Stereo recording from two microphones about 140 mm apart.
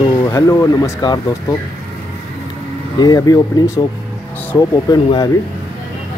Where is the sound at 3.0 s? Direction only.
30° left (ahead or behind).